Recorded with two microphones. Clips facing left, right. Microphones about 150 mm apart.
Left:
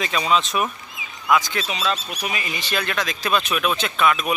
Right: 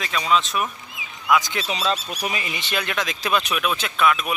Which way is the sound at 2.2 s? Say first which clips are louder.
Even; 25° right (ahead or behind).